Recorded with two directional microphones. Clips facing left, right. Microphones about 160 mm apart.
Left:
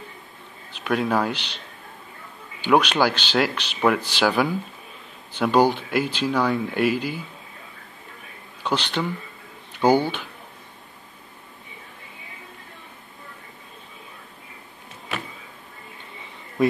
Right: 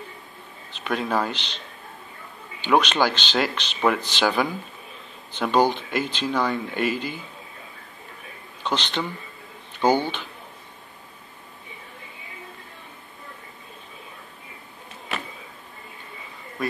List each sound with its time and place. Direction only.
0.7 s speech: 5° left (ahead or behind)
2.6 s speech: 10° left (ahead or behind)
8.6 s speech: 10° left (ahead or behind)